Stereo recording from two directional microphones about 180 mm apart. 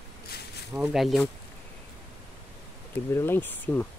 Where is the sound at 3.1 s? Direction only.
15° left (ahead or behind).